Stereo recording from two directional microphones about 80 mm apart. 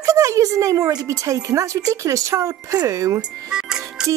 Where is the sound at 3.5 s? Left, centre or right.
Centre.